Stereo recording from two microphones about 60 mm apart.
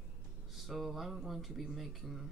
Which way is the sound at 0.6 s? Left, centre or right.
Centre.